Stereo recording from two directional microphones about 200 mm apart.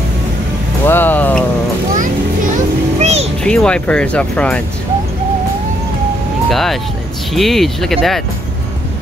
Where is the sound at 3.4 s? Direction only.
5° left (ahead or behind).